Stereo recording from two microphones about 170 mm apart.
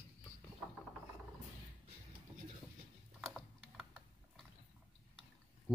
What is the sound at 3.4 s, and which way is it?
Typing, centre (ahead or behind).